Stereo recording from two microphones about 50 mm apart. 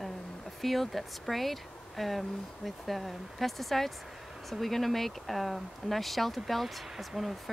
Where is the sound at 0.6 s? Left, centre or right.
Centre.